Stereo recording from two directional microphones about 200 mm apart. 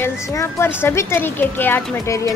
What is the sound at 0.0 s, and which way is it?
Speech, 15° left (ahead or behind).